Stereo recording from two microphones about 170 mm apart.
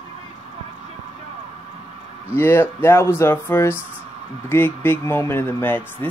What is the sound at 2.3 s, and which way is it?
Speech, 15° left (ahead or behind).